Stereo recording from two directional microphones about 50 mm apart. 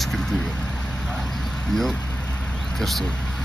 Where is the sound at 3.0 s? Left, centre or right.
Centre.